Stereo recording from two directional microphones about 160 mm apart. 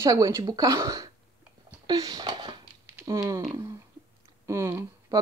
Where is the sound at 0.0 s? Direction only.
20° right (ahead or behind).